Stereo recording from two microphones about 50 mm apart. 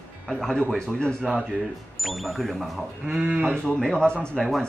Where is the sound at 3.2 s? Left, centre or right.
Right.